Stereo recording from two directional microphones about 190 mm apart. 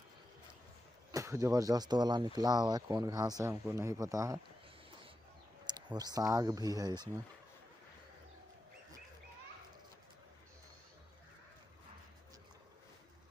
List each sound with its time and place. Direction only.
1.1 s speech: 15° right (ahead or behind)
5.9 s speech: 20° right (ahead or behind)